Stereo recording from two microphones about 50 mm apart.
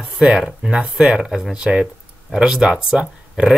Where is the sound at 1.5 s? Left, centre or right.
Right.